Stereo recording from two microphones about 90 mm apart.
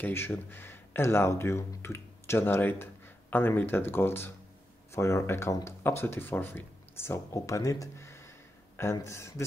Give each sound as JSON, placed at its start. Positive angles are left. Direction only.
{"t": 0.0, "sound": "speech", "side_deg": 25}